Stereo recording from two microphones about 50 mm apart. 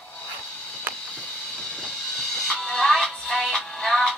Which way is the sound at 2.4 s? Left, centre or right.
Centre.